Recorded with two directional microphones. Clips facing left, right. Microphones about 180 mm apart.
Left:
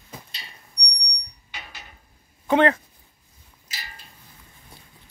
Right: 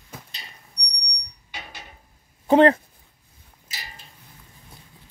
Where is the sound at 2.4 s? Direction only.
35° right (ahead or behind).